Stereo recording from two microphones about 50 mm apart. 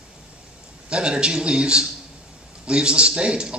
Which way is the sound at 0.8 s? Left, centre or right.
Centre.